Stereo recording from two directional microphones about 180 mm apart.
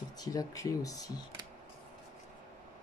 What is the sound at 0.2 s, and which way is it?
Speech, 20° left (ahead or behind).